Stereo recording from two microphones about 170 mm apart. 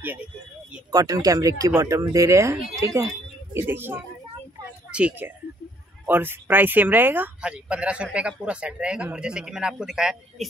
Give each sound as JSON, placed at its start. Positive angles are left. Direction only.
{"t": 0.9, "sound": "speech", "side_deg": -20}